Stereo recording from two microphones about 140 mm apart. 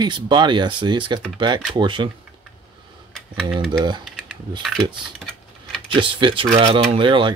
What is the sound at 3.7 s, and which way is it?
Speech, 30° right (ahead or behind).